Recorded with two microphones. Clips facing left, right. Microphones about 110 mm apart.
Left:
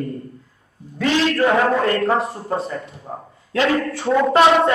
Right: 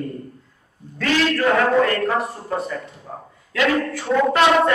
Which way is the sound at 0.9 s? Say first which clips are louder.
Left 2 dB; 20° left (ahead or behind).